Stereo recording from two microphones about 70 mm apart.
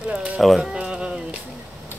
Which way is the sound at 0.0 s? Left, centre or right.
Centre.